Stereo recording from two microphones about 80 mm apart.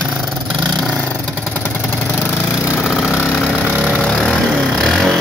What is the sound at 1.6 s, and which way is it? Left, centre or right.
Vehicle, left.